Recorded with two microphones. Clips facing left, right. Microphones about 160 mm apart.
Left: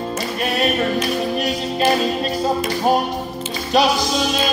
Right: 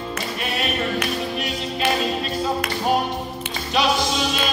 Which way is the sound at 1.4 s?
40° left (ahead or behind).